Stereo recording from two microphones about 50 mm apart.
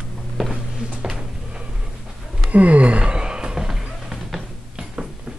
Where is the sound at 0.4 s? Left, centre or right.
Centre.